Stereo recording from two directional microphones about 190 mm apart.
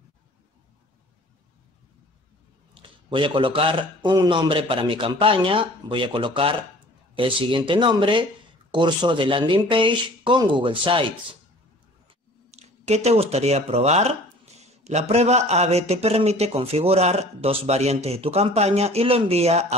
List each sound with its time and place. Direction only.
2.7 s a man's voice: 25° right (ahead or behind)
12.4 s a man's voice: 35° right (ahead or behind)